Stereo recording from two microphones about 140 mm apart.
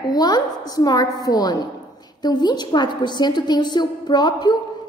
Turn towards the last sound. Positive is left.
turn(degrees=30)  # may be behind; listen again after turning